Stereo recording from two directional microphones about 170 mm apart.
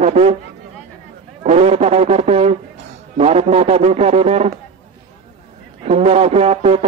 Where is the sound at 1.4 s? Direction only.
40° right (ahead or behind).